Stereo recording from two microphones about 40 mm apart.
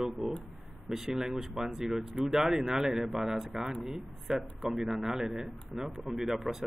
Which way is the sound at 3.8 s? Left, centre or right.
Centre.